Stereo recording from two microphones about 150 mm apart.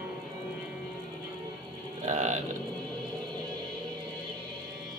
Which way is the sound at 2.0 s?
55° right (ahead or behind).